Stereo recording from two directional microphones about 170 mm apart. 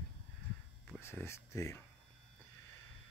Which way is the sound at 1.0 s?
15° left (ahead or behind).